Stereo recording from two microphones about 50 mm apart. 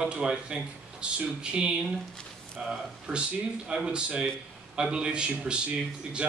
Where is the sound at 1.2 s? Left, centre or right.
Right.